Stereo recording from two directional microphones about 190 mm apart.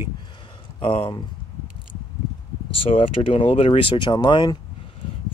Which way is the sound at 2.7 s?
30° left (ahead or behind).